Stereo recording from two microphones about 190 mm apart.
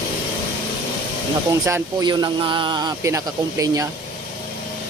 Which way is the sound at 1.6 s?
20° right (ahead or behind).